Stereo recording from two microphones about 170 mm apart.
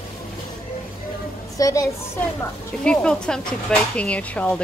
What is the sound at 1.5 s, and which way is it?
Speech, 20° left (ahead or behind).